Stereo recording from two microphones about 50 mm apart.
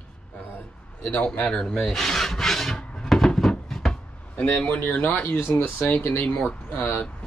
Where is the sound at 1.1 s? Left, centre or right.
Left.